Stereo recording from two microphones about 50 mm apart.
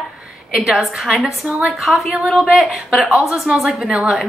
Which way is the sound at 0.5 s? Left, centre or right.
Centre.